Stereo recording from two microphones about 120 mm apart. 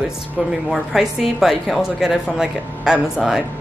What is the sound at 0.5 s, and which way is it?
A woman's voice, 5° right (ahead or behind).